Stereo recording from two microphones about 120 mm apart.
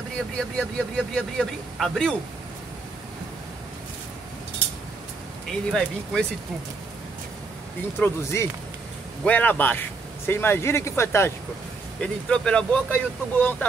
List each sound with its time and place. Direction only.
0.6 s speech: 5° left (ahead or behind)
5.7 s speech: 5° left (ahead or behind)
8.0 s a man's voice: 20° left (ahead or behind)
9.2 s a man's voice: 10° left (ahead or behind)
12.0 s speech: 5° left (ahead or behind)